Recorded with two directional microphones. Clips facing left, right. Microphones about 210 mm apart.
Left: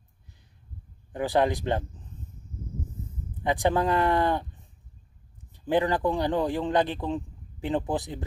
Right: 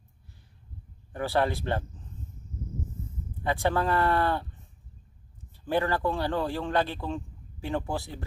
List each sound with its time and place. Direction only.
1.1 s a man's voice: 15° left (ahead or behind)
3.4 s a man's voice: 15° left (ahead or behind)
5.5 s a man's voice: 15° left (ahead or behind)